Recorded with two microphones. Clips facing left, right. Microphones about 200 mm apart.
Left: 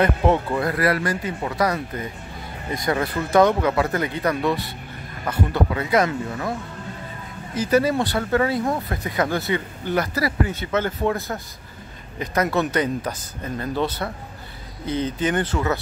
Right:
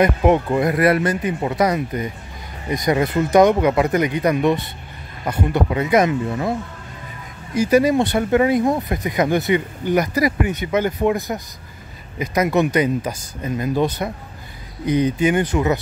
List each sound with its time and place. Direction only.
0.0 s speech: 15° right (ahead or behind)
7.5 s speech: 15° right (ahead or behind)